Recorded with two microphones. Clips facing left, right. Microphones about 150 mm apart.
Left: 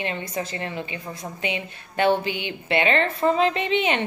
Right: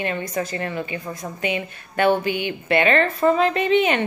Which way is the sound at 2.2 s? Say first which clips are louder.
Right 5 dB; 45° right (ahead or behind).